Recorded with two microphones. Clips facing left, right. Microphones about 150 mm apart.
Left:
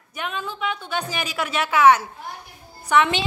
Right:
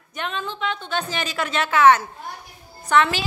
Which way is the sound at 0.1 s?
5° left (ahead or behind).